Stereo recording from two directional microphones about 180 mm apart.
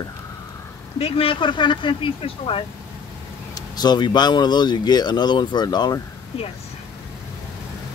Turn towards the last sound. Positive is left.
turn(degrees=30)  # may be behind; listen again after turning